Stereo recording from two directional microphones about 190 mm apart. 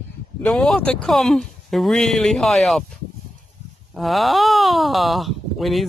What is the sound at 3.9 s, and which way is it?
Speech, centre (ahead or behind).